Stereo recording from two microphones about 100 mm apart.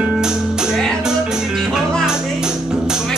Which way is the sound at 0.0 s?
10° right (ahead or behind).